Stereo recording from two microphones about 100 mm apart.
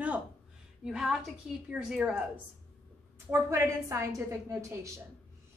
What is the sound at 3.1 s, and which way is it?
A woman's voice, 25° right (ahead or behind).